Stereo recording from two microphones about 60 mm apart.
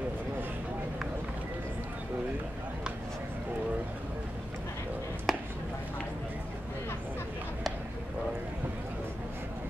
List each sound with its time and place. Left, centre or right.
5.3 s chop: centre